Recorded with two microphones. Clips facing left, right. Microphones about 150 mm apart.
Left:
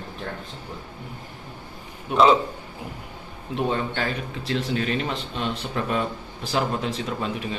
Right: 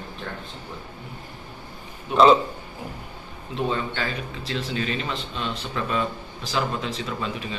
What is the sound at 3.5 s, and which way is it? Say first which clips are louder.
A man's voice: left 1 dB; 50° left (ahead or behind).